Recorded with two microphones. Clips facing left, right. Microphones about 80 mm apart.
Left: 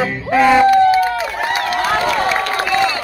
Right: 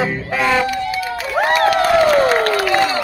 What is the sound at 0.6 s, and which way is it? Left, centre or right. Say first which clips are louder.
Run: left 10 dB; left.